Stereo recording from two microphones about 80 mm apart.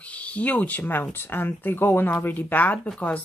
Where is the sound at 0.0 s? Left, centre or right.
Centre.